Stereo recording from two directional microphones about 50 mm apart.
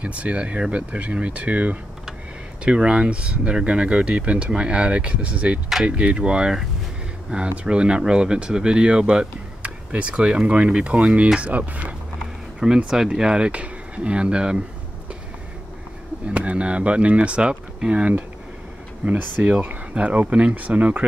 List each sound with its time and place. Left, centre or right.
0.0 s speech: right
7.2 s speech: right
12.5 s speech: centre
16.3 s speech: right
19.0 s speech: right